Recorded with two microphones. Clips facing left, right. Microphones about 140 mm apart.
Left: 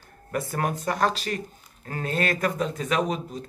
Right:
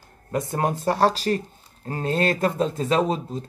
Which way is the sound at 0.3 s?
25° right (ahead or behind).